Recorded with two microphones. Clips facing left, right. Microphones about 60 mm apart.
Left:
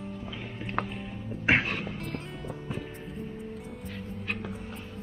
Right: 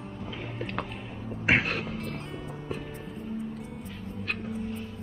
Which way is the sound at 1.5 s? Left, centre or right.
Centre.